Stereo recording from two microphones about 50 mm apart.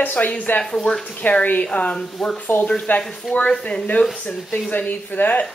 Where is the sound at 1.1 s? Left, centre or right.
Left.